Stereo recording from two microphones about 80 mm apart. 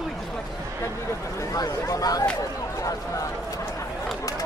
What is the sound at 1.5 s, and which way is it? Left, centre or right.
Speech, left.